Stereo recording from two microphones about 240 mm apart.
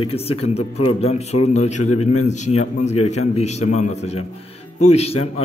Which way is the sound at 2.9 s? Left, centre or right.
Left.